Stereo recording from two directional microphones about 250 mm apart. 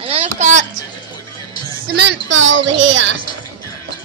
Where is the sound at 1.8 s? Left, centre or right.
Right.